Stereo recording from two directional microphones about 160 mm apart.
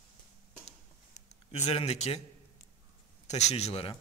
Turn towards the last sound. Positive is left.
turn(degrees=40)  # may be behind; listen again after turning